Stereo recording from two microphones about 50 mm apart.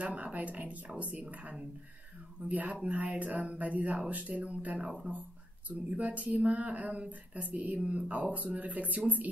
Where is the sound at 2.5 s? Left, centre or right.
Right.